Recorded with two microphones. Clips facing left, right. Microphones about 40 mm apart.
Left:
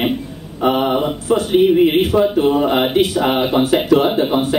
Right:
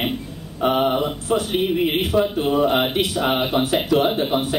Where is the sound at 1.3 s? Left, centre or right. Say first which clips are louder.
Left 8 dB; centre.